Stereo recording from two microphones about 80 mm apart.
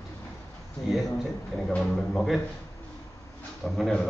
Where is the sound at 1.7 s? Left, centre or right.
Centre.